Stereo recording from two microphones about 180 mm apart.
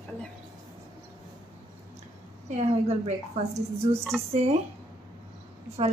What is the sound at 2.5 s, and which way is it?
Speech, 35° right (ahead or behind).